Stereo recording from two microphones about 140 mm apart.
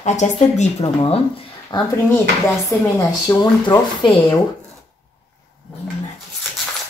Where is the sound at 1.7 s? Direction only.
30° left (ahead or behind).